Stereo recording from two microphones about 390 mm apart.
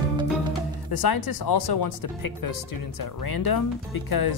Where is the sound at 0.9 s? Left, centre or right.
Left.